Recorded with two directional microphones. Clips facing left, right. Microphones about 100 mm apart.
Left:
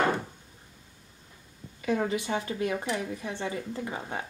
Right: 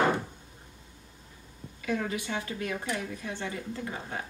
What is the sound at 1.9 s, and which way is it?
Speech, 25° left (ahead or behind).